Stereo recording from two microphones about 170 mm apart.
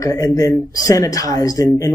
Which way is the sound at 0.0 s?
20° left (ahead or behind).